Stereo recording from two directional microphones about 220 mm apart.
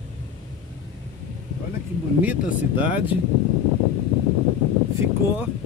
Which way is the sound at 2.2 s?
5° right (ahead or behind).